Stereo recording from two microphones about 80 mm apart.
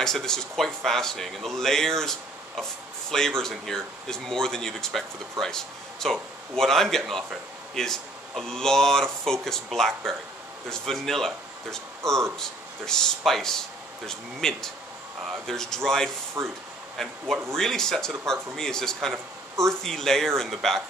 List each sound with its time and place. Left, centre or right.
0.0 s speech: centre
16.4 s speech: right
16.9 s speech: centre
19.1 s a sound: right
19.7 s speech: centre